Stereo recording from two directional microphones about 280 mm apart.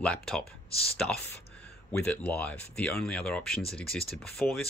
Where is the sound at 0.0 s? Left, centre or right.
Centre.